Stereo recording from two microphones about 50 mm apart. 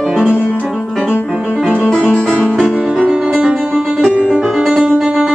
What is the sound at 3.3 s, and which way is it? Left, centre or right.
Music, right.